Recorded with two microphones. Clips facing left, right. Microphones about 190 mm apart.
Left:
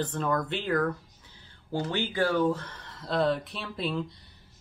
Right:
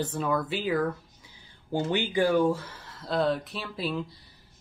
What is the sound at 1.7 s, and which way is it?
Speech, 25° right (ahead or behind).